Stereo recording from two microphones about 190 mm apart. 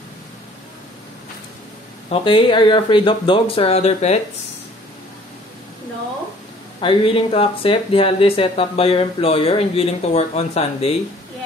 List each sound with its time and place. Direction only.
2.0 s speech: 25° left (ahead or behind)
6.8 s speech: 25° left (ahead or behind)